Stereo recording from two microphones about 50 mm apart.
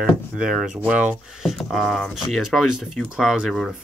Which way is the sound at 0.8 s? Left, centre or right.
Right.